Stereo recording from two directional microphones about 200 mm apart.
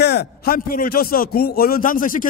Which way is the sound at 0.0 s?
55° left (ahead or behind).